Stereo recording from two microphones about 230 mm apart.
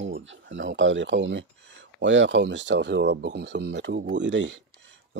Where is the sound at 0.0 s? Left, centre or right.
Right.